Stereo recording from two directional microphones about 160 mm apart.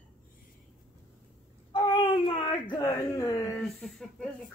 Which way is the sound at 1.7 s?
35° left (ahead or behind).